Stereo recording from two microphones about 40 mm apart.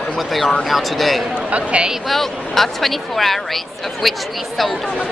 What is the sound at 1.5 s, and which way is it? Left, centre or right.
Speech, right.